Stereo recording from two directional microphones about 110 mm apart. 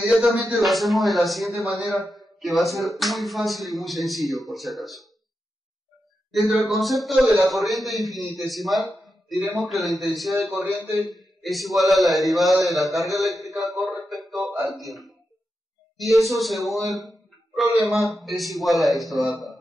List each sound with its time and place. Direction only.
0.0 s a man's voice: centre (ahead or behind)
6.5 s a man's voice: centre (ahead or behind)
10.5 s a man's voice: 25° right (ahead or behind)
11.1 s a man's voice: centre (ahead or behind)
13.2 s a sound: centre (ahead or behind)
16.0 s a man's voice: centre (ahead or behind)
16.9 s a sound: centre (ahead or behind)
17.7 s a man's voice: centre (ahead or behind)